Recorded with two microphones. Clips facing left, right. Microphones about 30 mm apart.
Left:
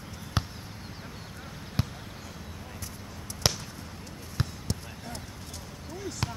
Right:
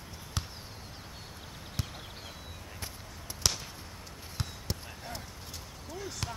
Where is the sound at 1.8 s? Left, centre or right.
Left.